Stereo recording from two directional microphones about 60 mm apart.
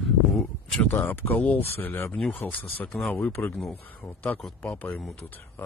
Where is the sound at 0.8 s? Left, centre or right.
Left.